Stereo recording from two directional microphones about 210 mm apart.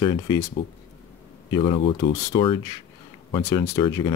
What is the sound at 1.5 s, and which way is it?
Speech, 25° left (ahead or behind).